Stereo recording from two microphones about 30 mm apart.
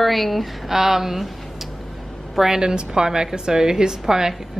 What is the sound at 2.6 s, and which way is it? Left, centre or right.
Speech, right.